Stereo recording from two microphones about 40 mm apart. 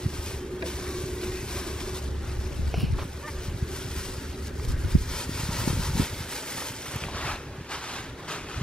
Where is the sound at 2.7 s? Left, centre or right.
Centre.